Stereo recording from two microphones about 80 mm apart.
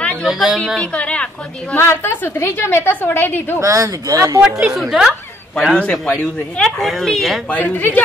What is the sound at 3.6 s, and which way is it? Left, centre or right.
Speech, right.